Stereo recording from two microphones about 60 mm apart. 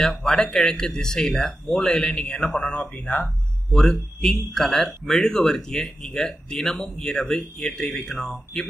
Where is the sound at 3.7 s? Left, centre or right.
Centre.